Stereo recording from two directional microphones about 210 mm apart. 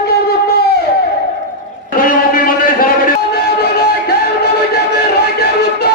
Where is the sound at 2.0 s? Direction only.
45° left (ahead or behind).